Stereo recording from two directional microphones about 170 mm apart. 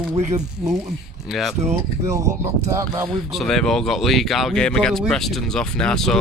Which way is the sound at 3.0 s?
Centre (ahead or behind).